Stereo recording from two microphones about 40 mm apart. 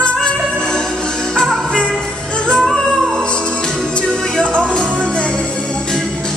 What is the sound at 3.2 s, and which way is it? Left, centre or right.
Music, left.